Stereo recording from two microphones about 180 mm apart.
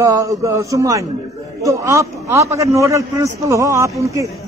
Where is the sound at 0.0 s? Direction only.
20° right (ahead or behind).